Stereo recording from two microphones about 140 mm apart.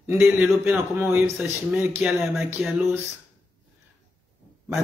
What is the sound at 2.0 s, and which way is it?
Speech, 5° right (ahead or behind).